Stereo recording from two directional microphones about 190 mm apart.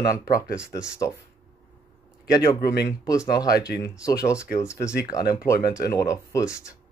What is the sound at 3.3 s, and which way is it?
Speech, 20° left (ahead or behind).